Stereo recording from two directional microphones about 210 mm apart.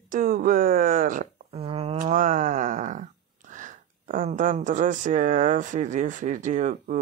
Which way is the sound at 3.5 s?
35° right (ahead or behind).